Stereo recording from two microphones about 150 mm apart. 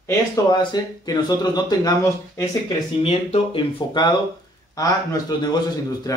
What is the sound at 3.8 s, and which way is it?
Speech, 30° left (ahead or behind).